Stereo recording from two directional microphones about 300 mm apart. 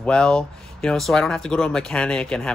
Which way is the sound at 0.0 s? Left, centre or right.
Centre.